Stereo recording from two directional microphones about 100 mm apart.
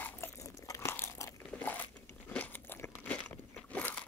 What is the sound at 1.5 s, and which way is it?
Biting, 15° left (ahead or behind).